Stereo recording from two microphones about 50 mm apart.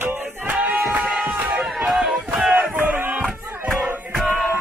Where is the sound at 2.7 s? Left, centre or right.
Right.